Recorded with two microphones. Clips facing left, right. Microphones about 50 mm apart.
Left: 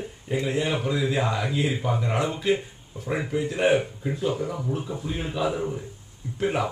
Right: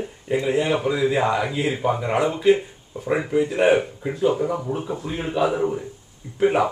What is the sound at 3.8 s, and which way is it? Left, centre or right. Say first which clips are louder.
Speech: right 5 dB; right.